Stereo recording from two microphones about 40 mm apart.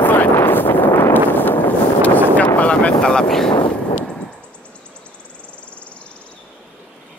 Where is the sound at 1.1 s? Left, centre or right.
Left.